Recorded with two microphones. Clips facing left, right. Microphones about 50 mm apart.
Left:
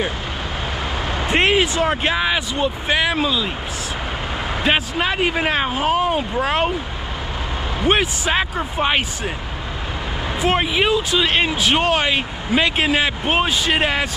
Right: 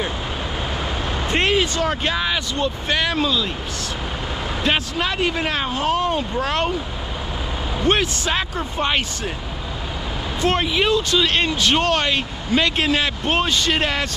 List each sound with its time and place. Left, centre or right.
1.3 s speech: centre
4.6 s speech: centre
7.8 s speech: centre
10.4 s speech: centre